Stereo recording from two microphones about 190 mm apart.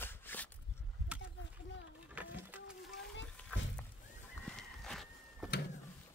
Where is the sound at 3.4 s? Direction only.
5° left (ahead or behind).